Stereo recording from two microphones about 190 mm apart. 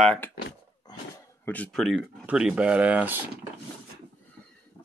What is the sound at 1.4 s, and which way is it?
Speech, 10° left (ahead or behind).